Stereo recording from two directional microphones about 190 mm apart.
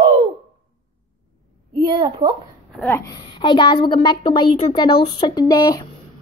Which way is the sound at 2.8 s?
15° left (ahead or behind).